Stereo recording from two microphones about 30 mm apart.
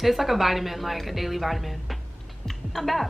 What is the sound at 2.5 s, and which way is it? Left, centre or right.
Typing, centre.